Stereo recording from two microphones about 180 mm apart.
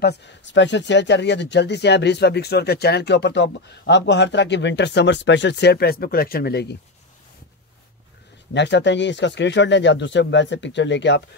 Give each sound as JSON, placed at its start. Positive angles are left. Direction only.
{"t": 0.0, "sound": "speech", "side_deg": 80}
{"t": 8.5, "sound": "speech", "side_deg": 75}